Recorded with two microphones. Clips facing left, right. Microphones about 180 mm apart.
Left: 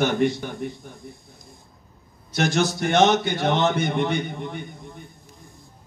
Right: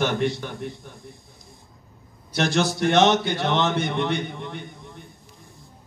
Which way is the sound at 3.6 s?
50° left (ahead or behind).